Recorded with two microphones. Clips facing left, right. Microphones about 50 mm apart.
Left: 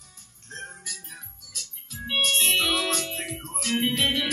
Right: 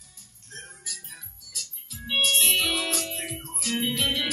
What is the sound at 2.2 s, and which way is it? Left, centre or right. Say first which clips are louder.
Music: left 1 dB; left.